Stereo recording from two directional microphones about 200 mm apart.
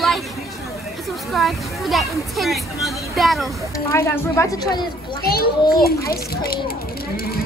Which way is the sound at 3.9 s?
15° left (ahead or behind).